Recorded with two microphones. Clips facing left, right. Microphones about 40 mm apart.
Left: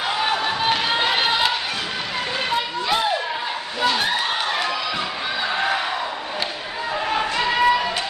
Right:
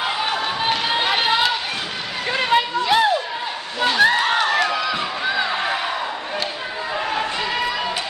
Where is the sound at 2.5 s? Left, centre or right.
Right.